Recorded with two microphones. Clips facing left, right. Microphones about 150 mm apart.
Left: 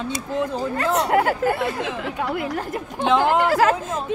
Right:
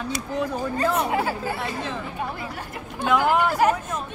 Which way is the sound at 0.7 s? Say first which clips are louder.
Left 4 dB; 80° left.